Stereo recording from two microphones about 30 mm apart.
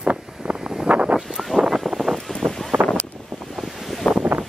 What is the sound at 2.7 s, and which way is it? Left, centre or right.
Wind noise, right.